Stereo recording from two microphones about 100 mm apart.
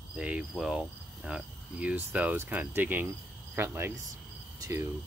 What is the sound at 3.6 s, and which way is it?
Speech, 20° right (ahead or behind).